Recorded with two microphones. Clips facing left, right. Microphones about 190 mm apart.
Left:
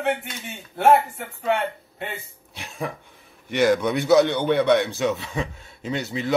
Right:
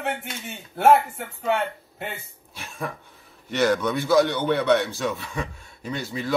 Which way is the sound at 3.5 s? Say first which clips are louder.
Left 2 dB; 10° left (ahead or behind).